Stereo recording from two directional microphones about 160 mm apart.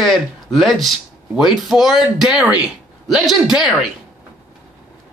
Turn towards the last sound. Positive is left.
turn(degrees=0)  # may be behind; listen again after turning